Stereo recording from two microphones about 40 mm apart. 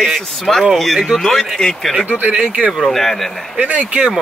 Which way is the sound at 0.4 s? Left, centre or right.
Centre.